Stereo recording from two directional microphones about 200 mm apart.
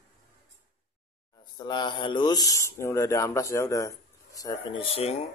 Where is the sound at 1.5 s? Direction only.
20° left (ahead or behind).